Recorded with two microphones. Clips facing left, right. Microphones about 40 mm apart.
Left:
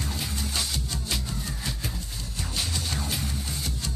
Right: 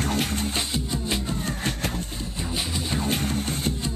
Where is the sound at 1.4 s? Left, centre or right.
Right.